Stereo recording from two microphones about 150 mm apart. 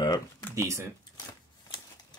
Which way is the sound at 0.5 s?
20° right (ahead or behind).